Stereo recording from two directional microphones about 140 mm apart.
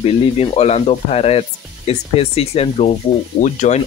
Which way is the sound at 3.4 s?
60° left (ahead or behind).